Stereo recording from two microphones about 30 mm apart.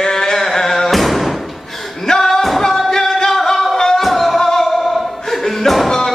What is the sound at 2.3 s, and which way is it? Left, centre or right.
Music, centre.